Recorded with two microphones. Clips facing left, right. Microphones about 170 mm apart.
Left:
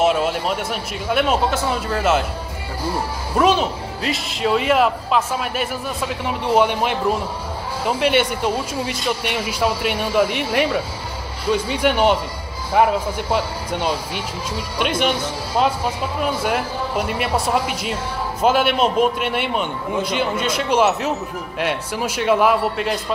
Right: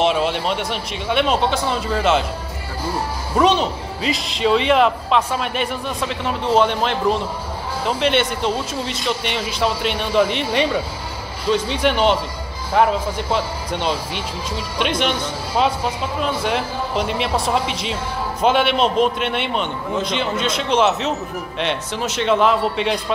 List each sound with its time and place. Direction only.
0.0 s a man's voice: 5° left (ahead or behind)
3.3 s a man's voice: 5° left (ahead or behind)
16.2 s a man's voice: 5° left (ahead or behind)